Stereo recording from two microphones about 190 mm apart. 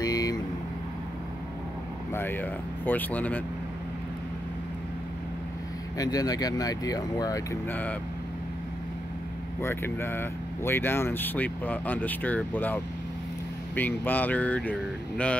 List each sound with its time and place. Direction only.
0.0 s vehicle: 20° left (ahead or behind)
2.1 s speech: 10° left (ahead or behind)
5.9 s speech: 20° left (ahead or behind)
7.7 s speech: 10° left (ahead or behind)
9.6 s speech: 10° left (ahead or behind)